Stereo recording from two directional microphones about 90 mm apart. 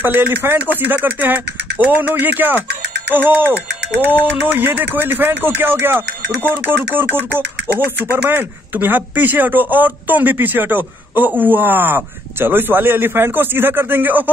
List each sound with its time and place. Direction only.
0.0 s speech: 20° right (ahead or behind)